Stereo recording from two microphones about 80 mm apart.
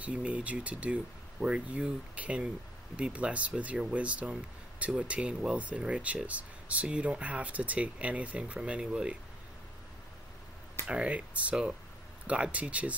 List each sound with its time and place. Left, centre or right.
0.0 s speech: centre
10.9 s speech: centre